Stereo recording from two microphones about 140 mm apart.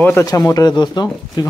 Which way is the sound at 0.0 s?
20° left (ahead or behind).